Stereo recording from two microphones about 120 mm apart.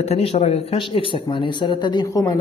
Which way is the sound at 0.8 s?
45° left (ahead or behind).